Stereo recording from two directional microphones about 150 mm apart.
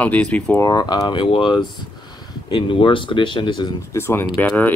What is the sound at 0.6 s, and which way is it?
Speech, 25° left (ahead or behind).